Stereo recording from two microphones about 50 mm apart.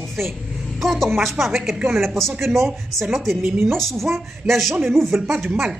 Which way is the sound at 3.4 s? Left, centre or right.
Right.